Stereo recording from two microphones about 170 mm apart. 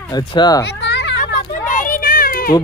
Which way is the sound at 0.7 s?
90° left.